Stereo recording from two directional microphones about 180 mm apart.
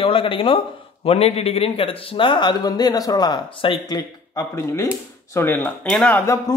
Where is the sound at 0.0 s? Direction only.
30° left (ahead or behind).